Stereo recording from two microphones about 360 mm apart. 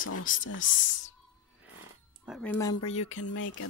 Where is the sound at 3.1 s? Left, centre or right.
Left.